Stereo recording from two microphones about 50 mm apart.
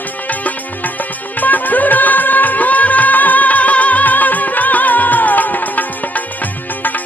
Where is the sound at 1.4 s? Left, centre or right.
Left.